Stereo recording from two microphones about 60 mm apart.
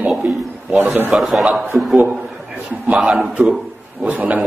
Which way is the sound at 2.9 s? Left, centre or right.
Centre.